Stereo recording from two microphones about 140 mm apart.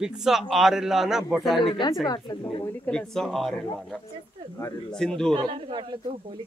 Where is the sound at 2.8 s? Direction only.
5° left (ahead or behind).